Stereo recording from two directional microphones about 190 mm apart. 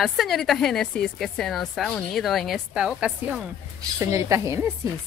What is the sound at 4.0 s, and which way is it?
Speech, 15° right (ahead or behind).